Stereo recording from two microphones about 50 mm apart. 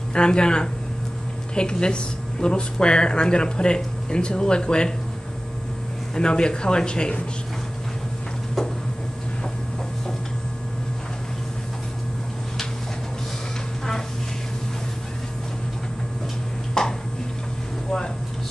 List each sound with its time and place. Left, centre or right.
0.1 s speech: centre
6.1 s speech: centre
16.8 s a sound: centre